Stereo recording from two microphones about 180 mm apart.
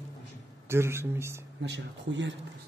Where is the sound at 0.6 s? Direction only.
15° right (ahead or behind).